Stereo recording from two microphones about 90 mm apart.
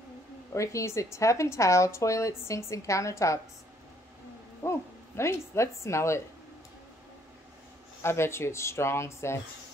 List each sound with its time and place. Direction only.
0.6 s a woman's voice: 35° left (ahead or behind)
4.6 s a woman's voice: 30° left (ahead or behind)
8.0 s speech: 30° left (ahead or behind)